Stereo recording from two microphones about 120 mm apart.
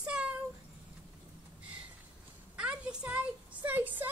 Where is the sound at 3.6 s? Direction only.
15° right (ahead or behind).